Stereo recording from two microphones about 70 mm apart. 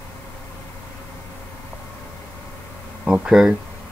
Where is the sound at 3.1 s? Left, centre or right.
Centre.